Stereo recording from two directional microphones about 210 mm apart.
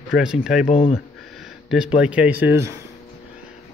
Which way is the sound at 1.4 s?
Centre (ahead or behind).